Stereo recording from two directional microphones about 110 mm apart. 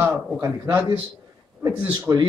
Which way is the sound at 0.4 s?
25° right (ahead or behind).